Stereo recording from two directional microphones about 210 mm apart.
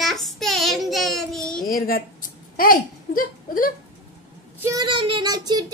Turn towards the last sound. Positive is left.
turn(degrees=-20)  # may be behind; listen again after turning